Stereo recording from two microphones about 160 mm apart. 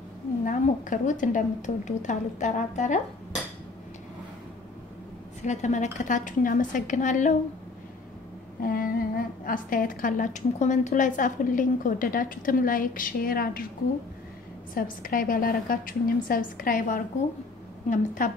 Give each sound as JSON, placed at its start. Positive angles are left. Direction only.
{"t": 0.5, "sound": "a woman's voice", "side_deg": 55}
{"t": 5.4, "sound": "a woman's voice", "side_deg": 50}
{"t": 8.6, "sound": "a woman's voice", "side_deg": 65}
{"t": 14.7, "sound": "a woman's voice", "side_deg": 60}